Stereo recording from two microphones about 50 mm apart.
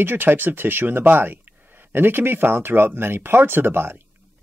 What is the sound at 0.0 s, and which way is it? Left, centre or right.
Speech, right.